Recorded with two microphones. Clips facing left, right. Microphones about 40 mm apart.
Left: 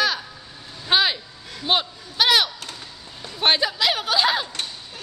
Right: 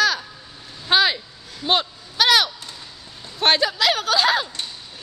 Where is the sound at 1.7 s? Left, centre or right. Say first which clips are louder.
Right 1 dB; centre.